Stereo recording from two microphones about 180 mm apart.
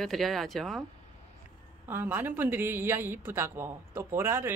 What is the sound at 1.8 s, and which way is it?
A woman's voice, 10° right (ahead or behind).